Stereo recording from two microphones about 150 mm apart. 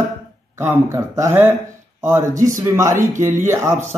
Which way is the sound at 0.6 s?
15° right (ahead or behind).